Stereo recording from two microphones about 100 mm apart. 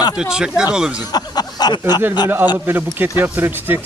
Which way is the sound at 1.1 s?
40° left (ahead or behind).